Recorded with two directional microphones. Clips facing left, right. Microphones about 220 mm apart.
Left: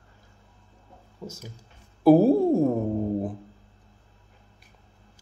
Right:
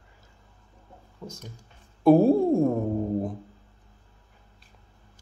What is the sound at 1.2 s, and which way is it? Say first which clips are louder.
Speech: left 2 dB; 5° left (ahead or behind).